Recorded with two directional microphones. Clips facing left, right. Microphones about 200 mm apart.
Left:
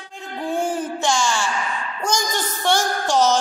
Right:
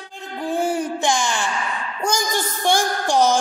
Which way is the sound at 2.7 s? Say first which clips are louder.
Even; 15° right (ahead or behind).